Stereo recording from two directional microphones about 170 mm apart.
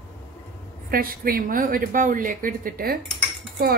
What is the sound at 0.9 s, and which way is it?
Speech, 60° right (ahead or behind).